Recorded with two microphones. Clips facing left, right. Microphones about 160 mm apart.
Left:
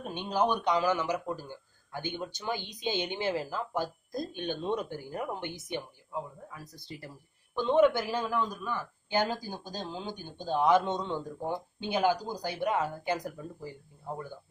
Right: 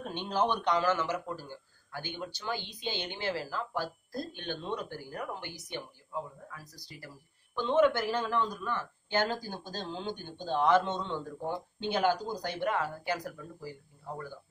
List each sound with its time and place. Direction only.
0.0 s speech: 10° left (ahead or behind)